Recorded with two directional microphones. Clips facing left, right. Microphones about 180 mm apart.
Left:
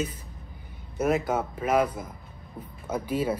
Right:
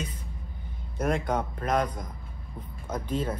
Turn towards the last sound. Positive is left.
turn(degrees=10)  # may be behind; listen again after turning